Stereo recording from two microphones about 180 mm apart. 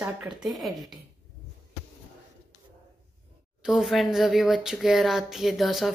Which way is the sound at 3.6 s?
Centre (ahead or behind).